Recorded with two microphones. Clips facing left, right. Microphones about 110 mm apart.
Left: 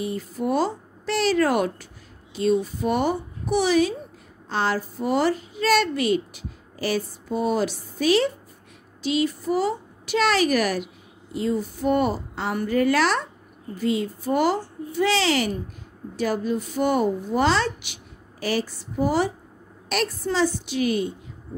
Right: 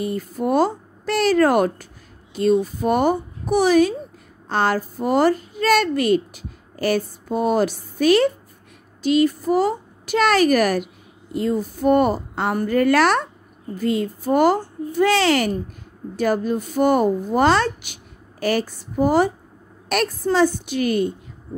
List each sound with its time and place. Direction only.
0.0 s a woman's voice: 50° right (ahead or behind)